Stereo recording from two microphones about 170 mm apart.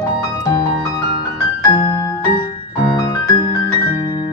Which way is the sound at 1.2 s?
25° left (ahead or behind).